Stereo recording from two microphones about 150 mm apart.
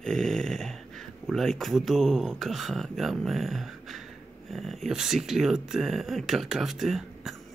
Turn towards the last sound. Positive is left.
turn(degrees=0)  # may be behind; listen again after turning